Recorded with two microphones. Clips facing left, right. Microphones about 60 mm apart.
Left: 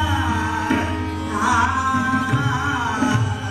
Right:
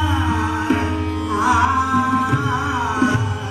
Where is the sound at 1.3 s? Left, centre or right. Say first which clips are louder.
Right 2 dB; right.